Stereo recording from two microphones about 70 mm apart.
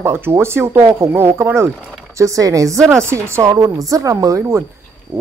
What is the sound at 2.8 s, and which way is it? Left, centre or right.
Speech, right.